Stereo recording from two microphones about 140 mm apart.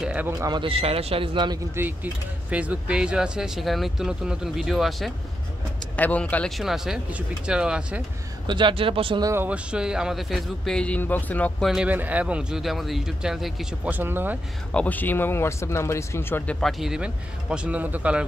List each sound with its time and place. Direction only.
0.0 s a sound: 10° right (ahead or behind)
0.4 s speech: 35° right (ahead or behind)
2.5 s speech: 10° right (ahead or behind)
5.9 s speech: 10° left (ahead or behind)
6.5 s speech: centre (ahead or behind)
8.5 s speech: 35° right (ahead or behind)
9.2 s speech: 15° right (ahead or behind); by 11.5 s 10° left (ahead or behind)
11.6 s speech: 5° right (ahead or behind)
14.7 s speech: 10° left (ahead or behind)
16.6 s a man's voice: centre (ahead or behind)